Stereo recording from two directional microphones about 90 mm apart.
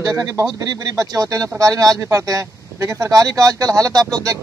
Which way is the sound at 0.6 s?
45° right (ahead or behind).